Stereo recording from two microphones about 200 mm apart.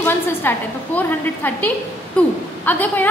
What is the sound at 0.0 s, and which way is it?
A woman's voice, 10° left (ahead or behind).